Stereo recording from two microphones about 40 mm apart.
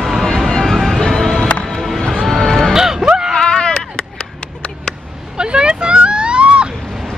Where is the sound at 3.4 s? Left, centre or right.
Left.